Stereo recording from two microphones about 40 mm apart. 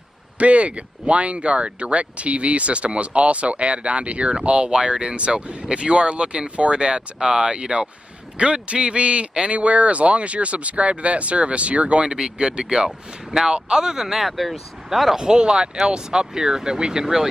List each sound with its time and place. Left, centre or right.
0.4 s speech: right; by 15.1 s centre
15.1 s speech: right